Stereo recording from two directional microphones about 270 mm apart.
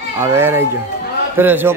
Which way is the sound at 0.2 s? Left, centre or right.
Centre.